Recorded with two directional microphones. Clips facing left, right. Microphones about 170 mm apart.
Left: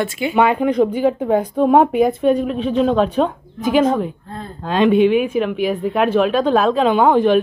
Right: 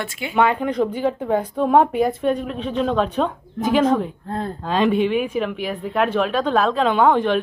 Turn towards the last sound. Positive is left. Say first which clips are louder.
# left 4 dB
turn(degrees=10)  # may be behind; listen again after turning